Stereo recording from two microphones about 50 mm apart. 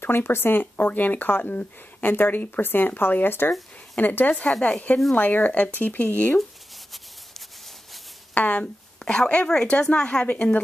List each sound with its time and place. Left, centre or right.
0.0 s a woman's voice: left
4.3 s speech: left
5.1 s speech: left
6.9 s rub: centre
8.4 s speech: left
9.0 s speech: centre
10.2 s speech: left